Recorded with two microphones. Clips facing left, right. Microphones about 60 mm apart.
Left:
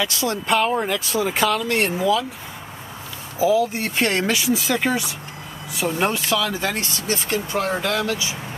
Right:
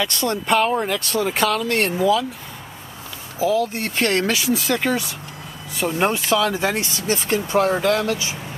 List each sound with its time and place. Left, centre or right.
0.0 s speech: centre
3.3 s speech: centre
7.1 s speech: right
7.8 s speech: right